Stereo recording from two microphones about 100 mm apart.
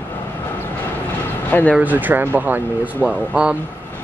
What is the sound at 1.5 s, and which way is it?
Speech, 15° left (ahead or behind).